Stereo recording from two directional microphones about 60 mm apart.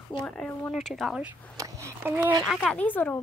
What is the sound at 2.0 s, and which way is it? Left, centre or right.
Speech, right.